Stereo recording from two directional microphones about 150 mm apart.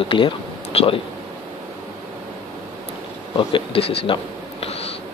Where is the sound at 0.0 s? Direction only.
35° left (ahead or behind).